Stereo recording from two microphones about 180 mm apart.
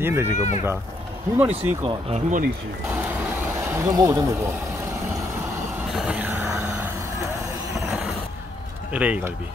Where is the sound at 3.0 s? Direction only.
10° right (ahead or behind).